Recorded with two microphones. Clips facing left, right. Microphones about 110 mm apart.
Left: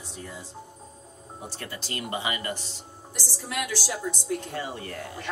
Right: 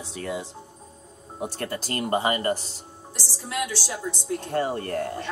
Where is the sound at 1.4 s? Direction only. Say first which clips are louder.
Right 9 dB; 55° right (ahead or behind).